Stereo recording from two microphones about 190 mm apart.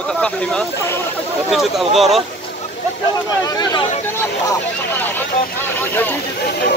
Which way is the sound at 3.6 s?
20° left (ahead or behind).